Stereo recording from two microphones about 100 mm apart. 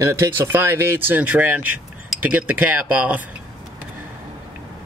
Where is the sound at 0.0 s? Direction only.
25° right (ahead or behind).